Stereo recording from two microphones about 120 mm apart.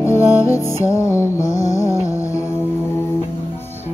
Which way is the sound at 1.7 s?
25° left (ahead or behind).